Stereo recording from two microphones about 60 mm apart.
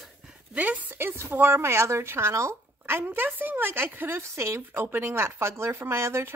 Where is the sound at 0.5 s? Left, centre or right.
Right.